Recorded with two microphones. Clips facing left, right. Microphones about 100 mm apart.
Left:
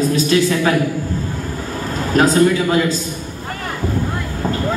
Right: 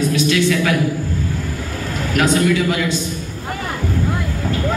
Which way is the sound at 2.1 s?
35° left (ahead or behind).